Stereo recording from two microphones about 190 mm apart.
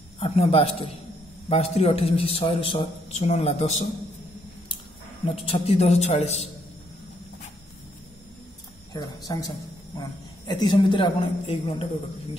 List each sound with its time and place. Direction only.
0.2 s a man's voice: 30° left (ahead or behind)
5.2 s a man's voice: 30° left (ahead or behind)
8.9 s a man's voice: 20° left (ahead or behind)